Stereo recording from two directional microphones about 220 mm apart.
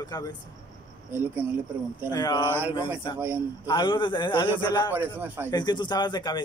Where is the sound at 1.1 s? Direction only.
10° right (ahead or behind).